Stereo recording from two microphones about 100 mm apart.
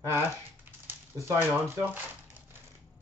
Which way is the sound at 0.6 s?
25° right (ahead or behind).